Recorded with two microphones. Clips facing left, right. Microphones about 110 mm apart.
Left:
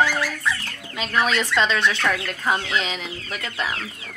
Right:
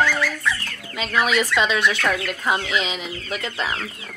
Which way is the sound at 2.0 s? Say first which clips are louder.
Right 1 dB; 10° right (ahead or behind).